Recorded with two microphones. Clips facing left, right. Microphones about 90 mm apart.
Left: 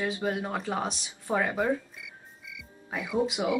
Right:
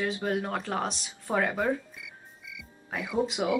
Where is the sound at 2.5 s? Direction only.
Centre (ahead or behind).